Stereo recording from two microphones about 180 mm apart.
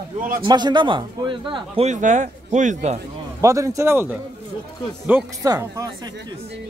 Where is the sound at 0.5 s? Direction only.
25° right (ahead or behind).